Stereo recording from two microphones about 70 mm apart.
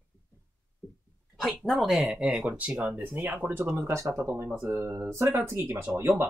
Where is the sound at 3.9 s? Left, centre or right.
Right.